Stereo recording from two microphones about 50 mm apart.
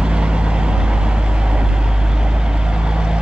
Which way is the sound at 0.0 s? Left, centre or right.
Right.